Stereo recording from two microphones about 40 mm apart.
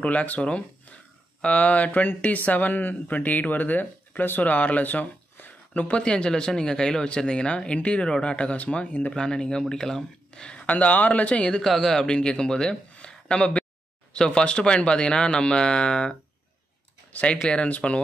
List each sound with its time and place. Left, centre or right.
0.0 s speech: left
4.8 s a sound: left
5.9 s speech: left
10.7 s speech: left
11.4 s speech: left
12.9 s a sound: left
14.1 s speech: left